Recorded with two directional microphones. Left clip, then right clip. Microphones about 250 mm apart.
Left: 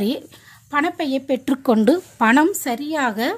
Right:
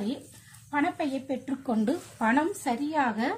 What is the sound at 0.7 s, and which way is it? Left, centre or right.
A woman's voice, left.